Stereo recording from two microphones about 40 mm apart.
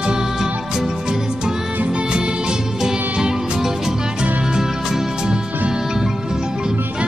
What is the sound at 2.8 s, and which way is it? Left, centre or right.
Music, centre.